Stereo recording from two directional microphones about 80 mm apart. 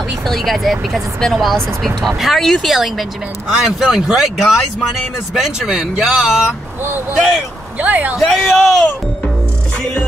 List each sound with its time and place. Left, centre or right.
0.3 s speech: centre
6.8 s speech: right
7.2 s speech: centre
7.8 s speech: right
8.3 s speech: centre